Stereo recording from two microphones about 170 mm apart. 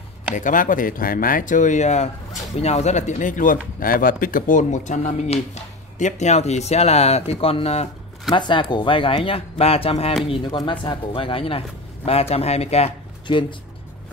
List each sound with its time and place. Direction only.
0.3 s speech: 50° left (ahead or behind)
8.3 s speech: 25° left (ahead or behind)